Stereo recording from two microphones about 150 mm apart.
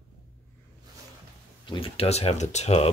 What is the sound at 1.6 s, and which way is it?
Speech, 35° left (ahead or behind).